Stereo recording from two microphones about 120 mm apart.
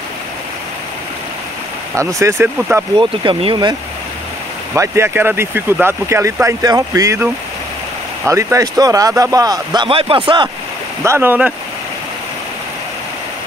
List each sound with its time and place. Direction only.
2.0 s speech: 25° right (ahead or behind)
3.0 s speech: 45° right (ahead or behind)
4.7 s speech: 25° right (ahead or behind)
8.3 s speech: 25° right (ahead or behind)
9.8 s speech: 50° right (ahead or behind)
11.1 s speech: 15° right (ahead or behind)